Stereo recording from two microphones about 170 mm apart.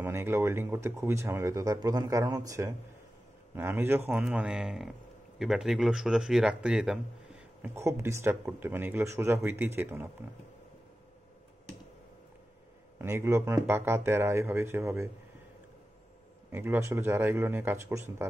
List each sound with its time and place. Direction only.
0.0 s speech: 15° right (ahead or behind)
7.6 s speech: 15° right (ahead or behind)
13.0 s speech: 15° right (ahead or behind)
16.5 s speech: 15° right (ahead or behind)